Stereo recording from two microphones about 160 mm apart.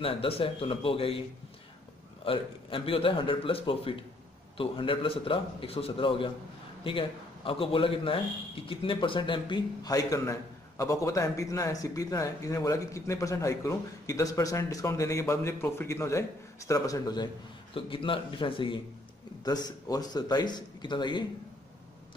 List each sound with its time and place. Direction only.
0.0 s a man's voice: 35° left (ahead or behind)
2.2 s a man's voice: 35° left (ahead or behind)